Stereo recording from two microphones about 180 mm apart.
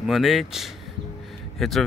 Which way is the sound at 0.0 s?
Centre (ahead or behind).